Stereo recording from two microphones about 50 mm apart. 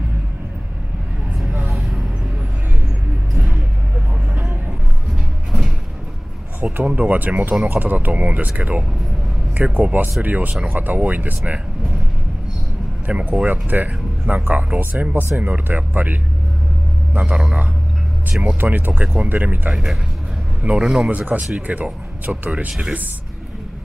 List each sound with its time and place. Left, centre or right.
1.7 s music: centre
6.6 s speech: right
13.0 s speech: right
17.1 s speech: right
18.6 s speech: right
19.7 s speech: centre
21.1 s speech: right